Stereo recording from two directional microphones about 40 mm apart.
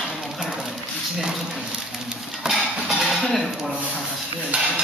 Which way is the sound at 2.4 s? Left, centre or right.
Centre.